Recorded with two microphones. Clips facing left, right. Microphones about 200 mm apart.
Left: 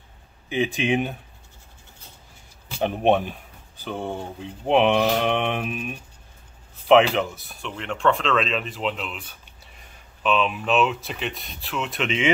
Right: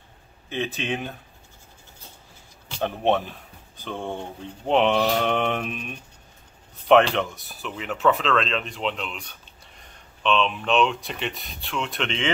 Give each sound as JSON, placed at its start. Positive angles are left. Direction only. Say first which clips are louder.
{"t": 0.5, "sound": "speech", "louder": "left 5 dB", "side_deg": 15}
{"t": 2.7, "sound": "speech", "louder": "left 3 dB", "side_deg": 15}